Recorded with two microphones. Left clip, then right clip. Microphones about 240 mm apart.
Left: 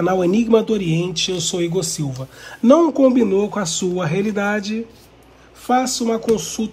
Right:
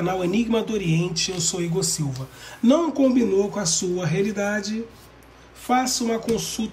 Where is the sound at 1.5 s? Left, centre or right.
Left.